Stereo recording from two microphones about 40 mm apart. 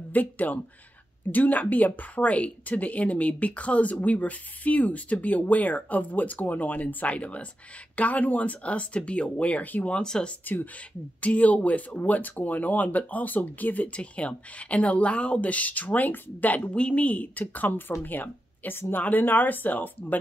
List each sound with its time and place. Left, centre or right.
0.1 s speech: left
11.1 s speech: left
11.9 s speech: left
13.9 s speech: left
16.7 s speech: left
19.0 s speech: left